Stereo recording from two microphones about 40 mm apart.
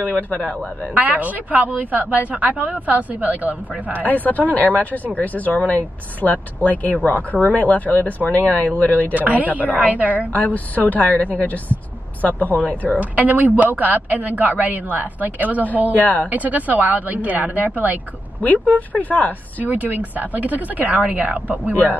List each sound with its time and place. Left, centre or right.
1.0 s speech: right
4.1 s speech: left
9.1 s a woman's voice: right
10.3 s a woman's voice: left
13.0 s speech: right
16.0 s speech: left
16.3 s speech: right
18.4 s speech: left
19.6 s a woman's voice: right